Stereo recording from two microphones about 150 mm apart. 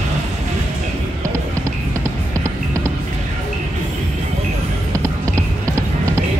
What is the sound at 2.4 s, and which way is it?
Music, 20° right (ahead or behind).